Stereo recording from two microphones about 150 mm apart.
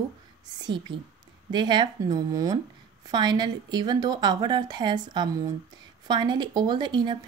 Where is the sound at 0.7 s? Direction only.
30° right (ahead or behind).